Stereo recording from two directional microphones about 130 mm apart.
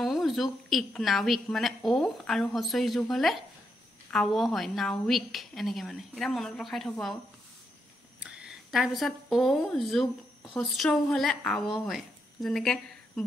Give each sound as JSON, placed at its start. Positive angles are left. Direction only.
{"t": 0.0, "sound": "a woman's voice", "side_deg": 0}
{"t": 8.2, "sound": "speech", "side_deg": -5}